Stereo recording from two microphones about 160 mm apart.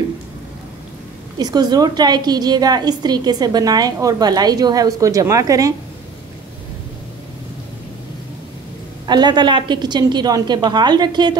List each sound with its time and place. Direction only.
1.4 s a woman's voice: 25° right (ahead or behind)
9.0 s a woman's voice: 25° right (ahead or behind)